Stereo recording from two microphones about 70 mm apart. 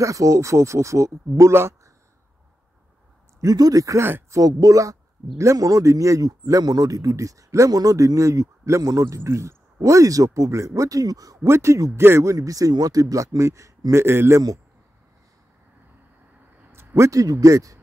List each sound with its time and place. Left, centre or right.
0.0 s speech: right
3.3 s speech: right
11.4 s speech: right
16.7 s speech: right